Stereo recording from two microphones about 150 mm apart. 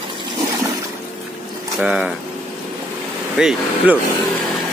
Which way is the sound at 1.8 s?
5° right (ahead or behind).